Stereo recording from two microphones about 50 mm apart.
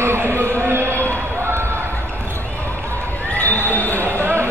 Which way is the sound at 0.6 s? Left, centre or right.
Right.